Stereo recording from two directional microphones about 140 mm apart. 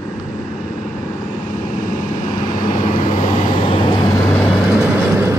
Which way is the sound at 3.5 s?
40° left (ahead or behind).